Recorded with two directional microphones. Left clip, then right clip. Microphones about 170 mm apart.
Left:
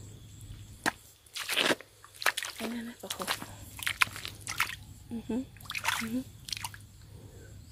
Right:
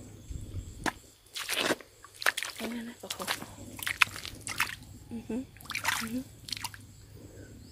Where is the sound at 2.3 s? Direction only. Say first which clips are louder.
Right 1 dB; centre (ahead or behind).